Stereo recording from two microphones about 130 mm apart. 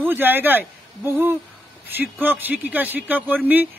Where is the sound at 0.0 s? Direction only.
15° right (ahead or behind).